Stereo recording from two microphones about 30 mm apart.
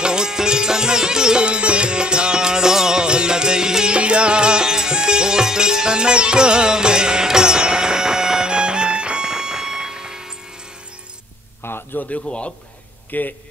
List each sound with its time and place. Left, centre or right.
0.0 s music: right
1.4 s music: right; by 3.0 s centre
3.0 s music: right
3.9 s music: right
9.2 s a sound: right
11.9 s a sound: left
12.3 s a man's voice: left
13.1 s speech: left